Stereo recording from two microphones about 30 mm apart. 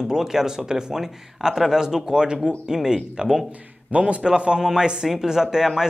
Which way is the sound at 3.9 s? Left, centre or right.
Right.